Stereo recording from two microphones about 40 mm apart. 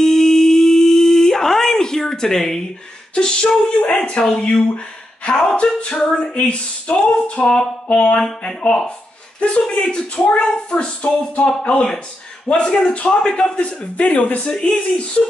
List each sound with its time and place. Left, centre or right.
0.0 s a sound: centre
3.2 s speech: left
5.6 s speech: left
12.4 s speech: left
13.6 s speech: left
14.5 s speech: centre